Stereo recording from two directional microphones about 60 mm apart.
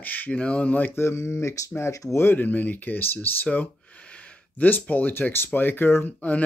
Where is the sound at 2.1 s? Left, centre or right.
Left.